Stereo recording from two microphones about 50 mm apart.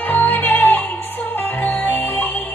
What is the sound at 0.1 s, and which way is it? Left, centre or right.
Music, left.